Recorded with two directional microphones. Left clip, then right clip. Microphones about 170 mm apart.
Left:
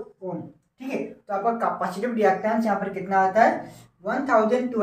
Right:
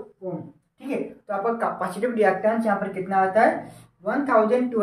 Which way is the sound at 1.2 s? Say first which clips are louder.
Left 1 dB; 35° right (ahead or behind).